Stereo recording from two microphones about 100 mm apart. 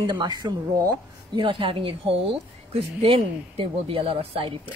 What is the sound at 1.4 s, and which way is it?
A woman's voice, 60° right (ahead or behind).